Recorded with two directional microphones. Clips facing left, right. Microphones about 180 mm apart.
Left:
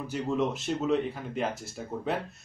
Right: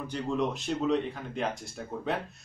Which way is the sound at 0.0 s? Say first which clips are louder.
Left 1 dB; 5° left (ahead or behind).